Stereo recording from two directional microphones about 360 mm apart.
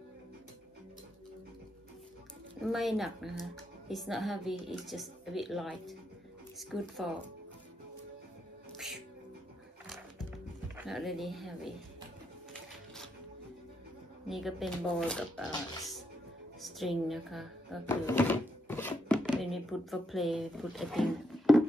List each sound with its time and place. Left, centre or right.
2.7 s a woman's voice: centre
10.8 s a woman's voice: centre
14.3 s a woman's voice: centre
16.6 s speech: centre